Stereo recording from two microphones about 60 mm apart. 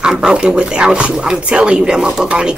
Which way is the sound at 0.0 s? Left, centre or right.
Centre.